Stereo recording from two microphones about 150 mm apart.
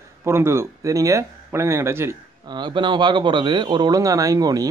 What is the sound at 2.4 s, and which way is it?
Speech, 30° right (ahead or behind).